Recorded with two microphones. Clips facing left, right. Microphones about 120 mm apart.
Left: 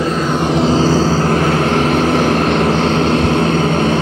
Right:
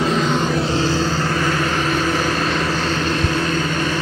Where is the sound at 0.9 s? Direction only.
40° left (ahead or behind).